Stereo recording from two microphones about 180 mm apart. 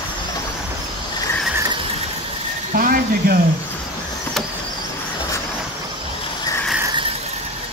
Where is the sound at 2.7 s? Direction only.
50° right (ahead or behind).